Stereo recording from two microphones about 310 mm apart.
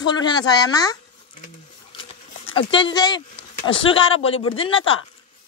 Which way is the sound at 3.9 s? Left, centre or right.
Left.